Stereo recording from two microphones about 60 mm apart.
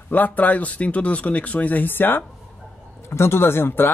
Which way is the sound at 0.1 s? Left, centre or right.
Left.